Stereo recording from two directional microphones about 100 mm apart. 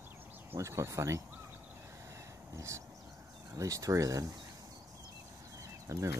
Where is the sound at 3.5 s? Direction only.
35° right (ahead or behind).